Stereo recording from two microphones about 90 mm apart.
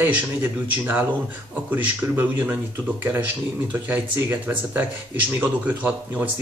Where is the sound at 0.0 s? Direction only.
20° right (ahead or behind).